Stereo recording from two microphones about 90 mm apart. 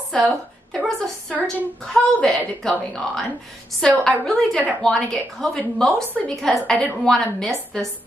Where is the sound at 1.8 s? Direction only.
5° left (ahead or behind).